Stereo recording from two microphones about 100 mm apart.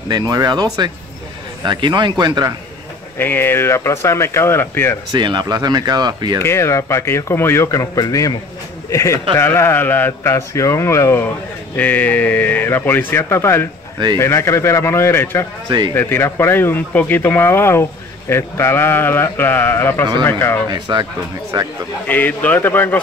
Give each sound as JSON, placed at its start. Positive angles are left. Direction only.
{"t": 0.1, "sound": "speech", "side_deg": -40}
{"t": 3.2, "sound": "speech", "side_deg": 20}
{"t": 5.1, "sound": "speech", "side_deg": -50}
{"t": 6.4, "sound": "speech", "side_deg": 25}
{"t": 20.7, "sound": "speech", "side_deg": -45}
{"t": 22.0, "sound": "speech", "side_deg": 15}